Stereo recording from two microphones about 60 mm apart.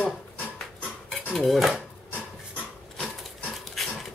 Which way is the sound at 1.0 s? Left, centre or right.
Centre.